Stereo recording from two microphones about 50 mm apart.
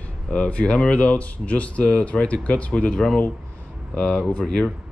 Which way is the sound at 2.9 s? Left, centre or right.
Centre.